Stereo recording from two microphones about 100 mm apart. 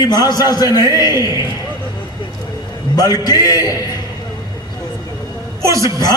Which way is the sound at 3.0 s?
40° left (ahead or behind).